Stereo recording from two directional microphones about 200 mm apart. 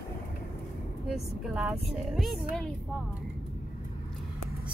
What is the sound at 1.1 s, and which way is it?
Speech, 5° right (ahead or behind).